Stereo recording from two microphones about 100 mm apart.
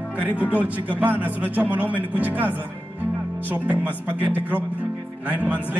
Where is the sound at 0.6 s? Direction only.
15° right (ahead or behind).